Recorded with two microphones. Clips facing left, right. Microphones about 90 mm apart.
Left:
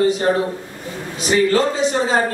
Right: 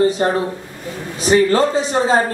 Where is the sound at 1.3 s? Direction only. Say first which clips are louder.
Right 2 dB; 30° right (ahead or behind).